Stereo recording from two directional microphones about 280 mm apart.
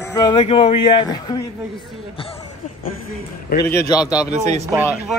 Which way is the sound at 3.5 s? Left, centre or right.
Left.